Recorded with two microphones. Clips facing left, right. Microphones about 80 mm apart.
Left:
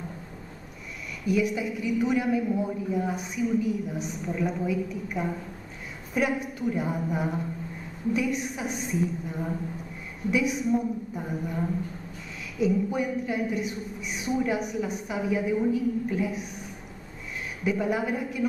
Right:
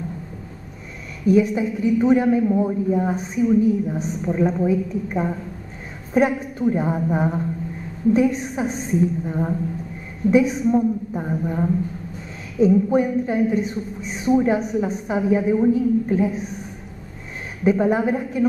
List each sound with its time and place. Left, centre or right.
1.2 s a woman's voice: right
17.6 s a woman's voice: right